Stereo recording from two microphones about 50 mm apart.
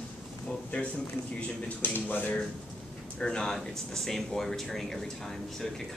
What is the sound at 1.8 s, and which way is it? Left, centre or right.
Speech, left.